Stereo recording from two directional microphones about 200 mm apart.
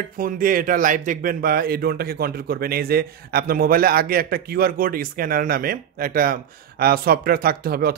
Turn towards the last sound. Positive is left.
turn(degrees=-50)  # may be behind; listen again after turning